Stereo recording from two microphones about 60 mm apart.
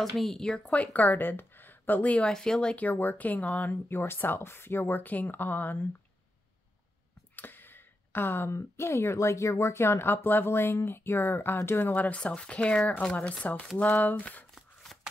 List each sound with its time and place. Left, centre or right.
0.0 s speech: centre
0.7 s speech: left
2.3 s speech: centre
2.8 s speech: left
3.7 s speech: left
7.3 s a sound: left
8.5 s speech: left